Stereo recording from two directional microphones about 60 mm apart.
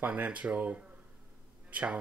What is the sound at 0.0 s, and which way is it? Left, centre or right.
Speech, right.